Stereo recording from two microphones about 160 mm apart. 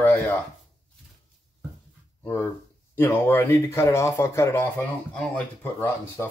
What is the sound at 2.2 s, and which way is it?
Speech, 15° left (ahead or behind).